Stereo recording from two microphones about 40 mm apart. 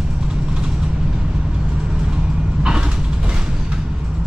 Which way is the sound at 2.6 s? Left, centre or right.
Right.